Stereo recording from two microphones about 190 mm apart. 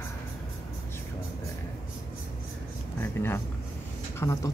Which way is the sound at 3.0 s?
10° left (ahead or behind).